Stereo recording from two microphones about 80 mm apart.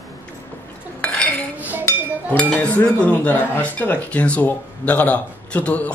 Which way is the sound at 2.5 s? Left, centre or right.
Centre.